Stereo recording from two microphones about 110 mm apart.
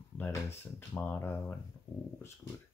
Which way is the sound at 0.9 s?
15° left (ahead or behind).